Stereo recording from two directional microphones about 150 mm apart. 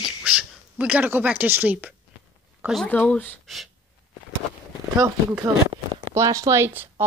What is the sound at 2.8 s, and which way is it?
Speech, 10° left (ahead or behind).